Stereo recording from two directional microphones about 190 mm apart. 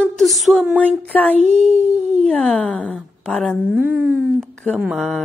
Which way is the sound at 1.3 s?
35° right (ahead or behind).